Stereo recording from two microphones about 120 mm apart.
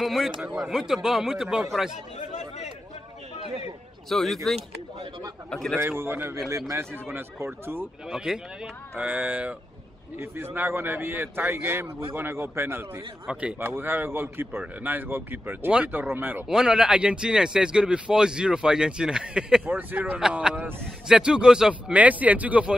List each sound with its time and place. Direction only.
0.0 s speech: centre (ahead or behind)
2.1 s chatter: 75° left (ahead or behind)
4.1 s speech: centre (ahead or behind)
5.8 s speech: 20° right (ahead or behind)
8.1 s speech: 5° right (ahead or behind)
16.4 s speech: 5° right (ahead or behind)